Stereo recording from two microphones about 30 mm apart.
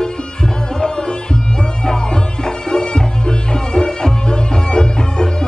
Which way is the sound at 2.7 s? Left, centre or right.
Left.